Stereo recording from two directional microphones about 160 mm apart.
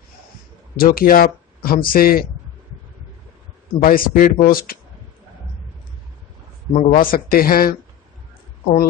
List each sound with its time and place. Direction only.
0.7 s speech: 65° left (ahead or behind)
3.8 s speech: 60° left (ahead or behind)
6.7 s speech: 45° left (ahead or behind); by 7.7 s 65° left (ahead or behind)